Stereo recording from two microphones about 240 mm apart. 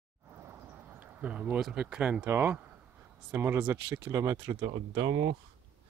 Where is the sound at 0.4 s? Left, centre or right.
Centre.